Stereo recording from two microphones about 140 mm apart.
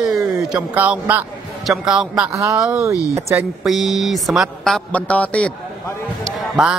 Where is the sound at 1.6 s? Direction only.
5° right (ahead or behind).